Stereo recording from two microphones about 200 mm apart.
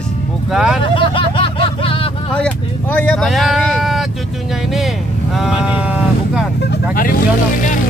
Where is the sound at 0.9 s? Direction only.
25° left (ahead or behind).